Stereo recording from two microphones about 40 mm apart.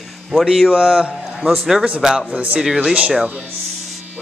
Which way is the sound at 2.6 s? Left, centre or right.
Centre.